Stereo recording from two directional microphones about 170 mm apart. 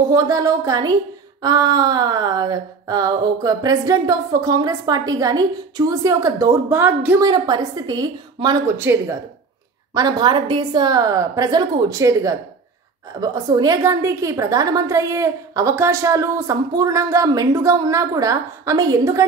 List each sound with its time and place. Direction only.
0.1 s a woman's voice: 20° right (ahead or behind)
7.2 s a woman's voice: 25° right (ahead or behind)
8.7 s speech: 10° right (ahead or behind)
9.9 s a woman's voice: 25° right (ahead or behind)